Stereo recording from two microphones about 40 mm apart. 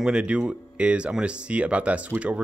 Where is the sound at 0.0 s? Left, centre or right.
Right.